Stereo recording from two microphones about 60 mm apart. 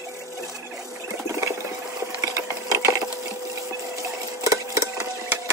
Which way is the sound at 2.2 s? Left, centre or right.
Right.